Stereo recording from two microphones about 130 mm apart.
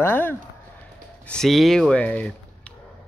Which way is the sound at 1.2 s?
5° left (ahead or behind).